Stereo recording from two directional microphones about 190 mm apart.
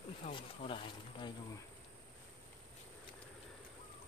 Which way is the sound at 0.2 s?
30° left (ahead or behind).